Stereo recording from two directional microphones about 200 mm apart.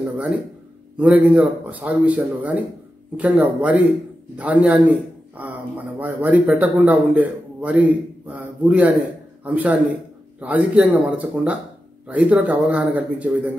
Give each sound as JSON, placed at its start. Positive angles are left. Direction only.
{"t": 0.9, "sound": "speech", "side_deg": -5}